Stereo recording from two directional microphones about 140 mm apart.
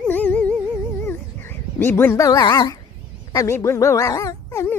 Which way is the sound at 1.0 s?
15° left (ahead or behind).